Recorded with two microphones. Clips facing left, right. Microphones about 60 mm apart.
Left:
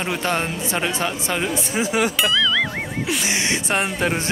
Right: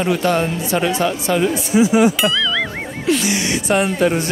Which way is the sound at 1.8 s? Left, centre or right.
Left.